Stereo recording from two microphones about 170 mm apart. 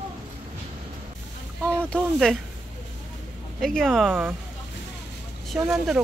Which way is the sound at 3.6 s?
5° left (ahead or behind).